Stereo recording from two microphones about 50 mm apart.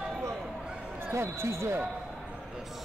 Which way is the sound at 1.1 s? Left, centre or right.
Right.